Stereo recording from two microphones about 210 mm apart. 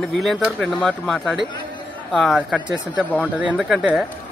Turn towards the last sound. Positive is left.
turn(degrees=-5)  # may be behind; listen again after turning